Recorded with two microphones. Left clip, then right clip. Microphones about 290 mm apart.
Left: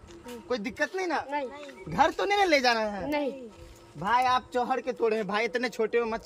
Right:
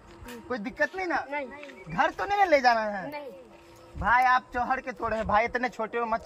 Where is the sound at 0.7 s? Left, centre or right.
Centre.